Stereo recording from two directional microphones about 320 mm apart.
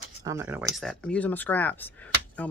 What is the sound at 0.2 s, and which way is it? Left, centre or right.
Speech, centre.